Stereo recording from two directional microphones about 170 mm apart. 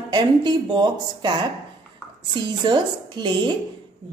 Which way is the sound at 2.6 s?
25° right (ahead or behind).